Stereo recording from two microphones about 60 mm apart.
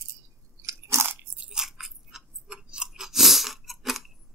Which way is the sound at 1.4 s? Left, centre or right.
Centre.